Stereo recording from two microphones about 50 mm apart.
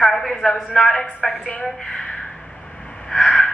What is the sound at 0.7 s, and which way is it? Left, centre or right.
A woman's voice, centre.